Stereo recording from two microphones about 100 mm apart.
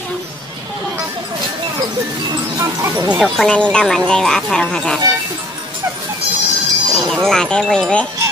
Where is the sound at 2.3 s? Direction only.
30° right (ahead or behind).